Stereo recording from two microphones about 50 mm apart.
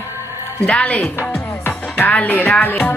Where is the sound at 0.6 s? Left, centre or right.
Left.